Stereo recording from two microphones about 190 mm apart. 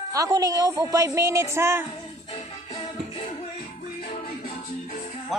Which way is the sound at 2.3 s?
25° left (ahead or behind).